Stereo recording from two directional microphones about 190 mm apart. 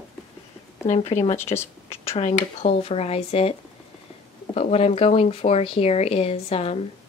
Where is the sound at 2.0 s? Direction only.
35° left (ahead or behind).